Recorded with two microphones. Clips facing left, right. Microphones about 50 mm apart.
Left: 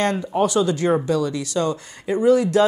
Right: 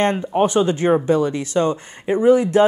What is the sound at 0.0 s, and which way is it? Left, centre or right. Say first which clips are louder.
Speech: right 2 dB; right.